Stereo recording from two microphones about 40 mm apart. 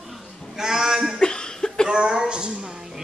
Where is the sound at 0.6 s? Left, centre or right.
Centre.